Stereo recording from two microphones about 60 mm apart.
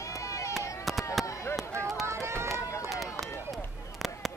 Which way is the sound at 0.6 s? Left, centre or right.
Left.